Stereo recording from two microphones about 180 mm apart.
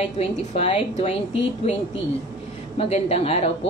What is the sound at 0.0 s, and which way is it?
A woman's voice, 35° left (ahead or behind).